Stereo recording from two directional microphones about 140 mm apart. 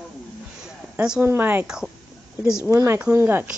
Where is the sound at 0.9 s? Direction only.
10° right (ahead or behind).